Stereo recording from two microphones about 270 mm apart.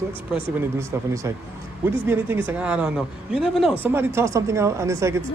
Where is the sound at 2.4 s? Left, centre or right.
Centre.